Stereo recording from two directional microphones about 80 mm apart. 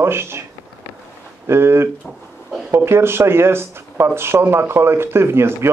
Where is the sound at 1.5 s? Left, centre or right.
Right.